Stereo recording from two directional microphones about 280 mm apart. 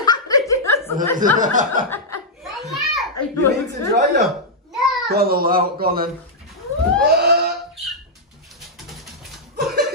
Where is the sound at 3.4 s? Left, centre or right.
Right.